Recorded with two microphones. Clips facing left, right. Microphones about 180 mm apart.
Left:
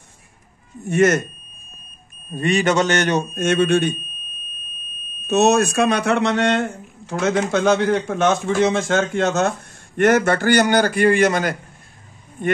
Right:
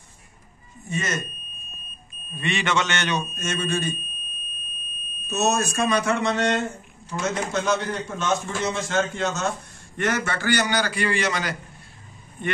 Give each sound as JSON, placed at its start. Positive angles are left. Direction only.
{"t": 0.8, "sound": "speech", "side_deg": 65}
{"t": 2.3, "sound": "a man's voice", "side_deg": 40}
{"t": 5.3, "sound": "speech", "side_deg": 65}